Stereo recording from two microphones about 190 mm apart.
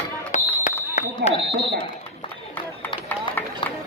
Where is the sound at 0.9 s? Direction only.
35° left (ahead or behind).